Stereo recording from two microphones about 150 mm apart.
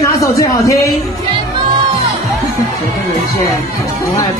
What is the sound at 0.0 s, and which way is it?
Speech, 20° left (ahead or behind).